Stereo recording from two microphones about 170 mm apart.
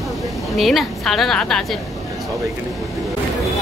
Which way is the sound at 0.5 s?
Centre (ahead or behind).